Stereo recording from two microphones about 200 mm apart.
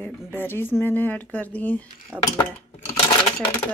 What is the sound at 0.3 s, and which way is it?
Speech, 10° left (ahead or behind).